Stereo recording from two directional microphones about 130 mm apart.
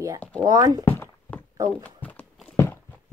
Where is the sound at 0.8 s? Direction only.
15° left (ahead or behind).